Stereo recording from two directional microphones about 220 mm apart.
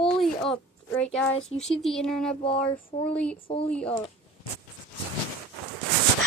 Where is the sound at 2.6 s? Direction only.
40° left (ahead or behind).